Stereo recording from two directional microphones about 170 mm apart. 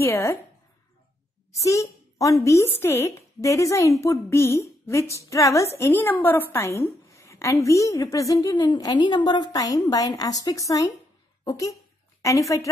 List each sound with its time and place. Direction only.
0.0 s speech: 15° left (ahead or behind)
1.6 s a woman's voice: 20° left (ahead or behind)